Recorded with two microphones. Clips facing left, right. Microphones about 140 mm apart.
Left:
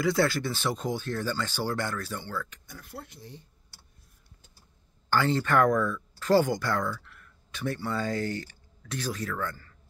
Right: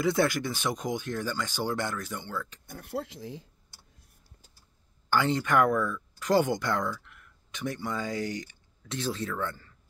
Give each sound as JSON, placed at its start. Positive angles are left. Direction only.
{"t": 0.0, "sound": "speech", "side_deg": -20}
{"t": 2.6, "sound": "speech", "side_deg": -50}
{"t": 2.9, "sound": "speech", "side_deg": -90}
{"t": 5.1, "sound": "speech", "side_deg": -15}